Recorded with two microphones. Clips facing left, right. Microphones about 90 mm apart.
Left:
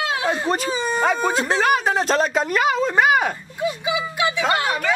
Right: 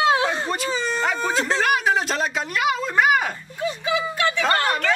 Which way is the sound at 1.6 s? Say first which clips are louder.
Left 2 dB; 35° left (ahead or behind).